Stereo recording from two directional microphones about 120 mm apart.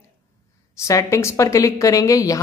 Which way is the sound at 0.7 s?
25° left (ahead or behind).